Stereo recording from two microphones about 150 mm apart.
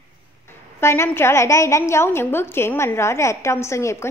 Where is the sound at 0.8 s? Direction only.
15° left (ahead or behind).